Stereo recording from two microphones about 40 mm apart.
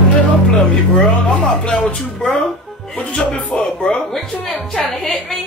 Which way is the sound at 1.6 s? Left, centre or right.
Left.